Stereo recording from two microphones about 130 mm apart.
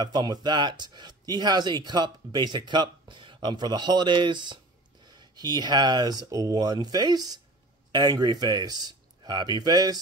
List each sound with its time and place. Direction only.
0.0 s speech: 35° right (ahead or behind)